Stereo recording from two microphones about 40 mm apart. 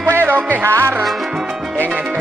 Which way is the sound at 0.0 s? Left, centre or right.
Right.